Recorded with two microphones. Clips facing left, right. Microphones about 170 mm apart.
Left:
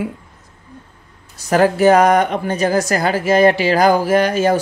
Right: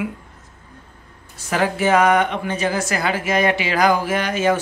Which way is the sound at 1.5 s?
40° left (ahead or behind).